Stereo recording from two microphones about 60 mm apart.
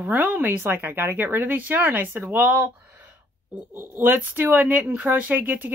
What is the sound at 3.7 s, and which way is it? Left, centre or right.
Speech, right.